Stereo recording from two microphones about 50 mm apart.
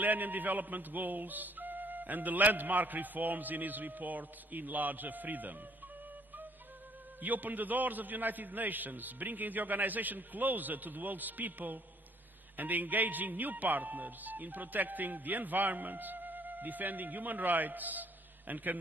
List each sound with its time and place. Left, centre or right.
0.0 s speech: right
7.2 s speech: right